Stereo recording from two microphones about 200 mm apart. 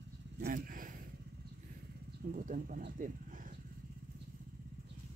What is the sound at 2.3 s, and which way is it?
Speech, 40° right (ahead or behind).